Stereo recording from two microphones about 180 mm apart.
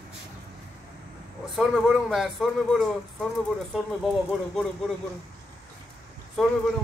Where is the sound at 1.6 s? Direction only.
Centre (ahead or behind).